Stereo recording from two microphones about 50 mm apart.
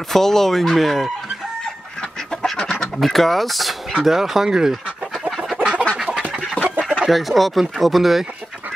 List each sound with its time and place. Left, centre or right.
0.1 s speech: centre
2.5 s chicken: centre
3.0 s speech: centre
5.6 s chicken: right
6.6 s chicken: left
7.1 s speech: centre